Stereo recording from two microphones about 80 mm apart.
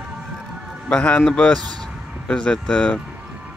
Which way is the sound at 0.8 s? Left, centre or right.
Centre.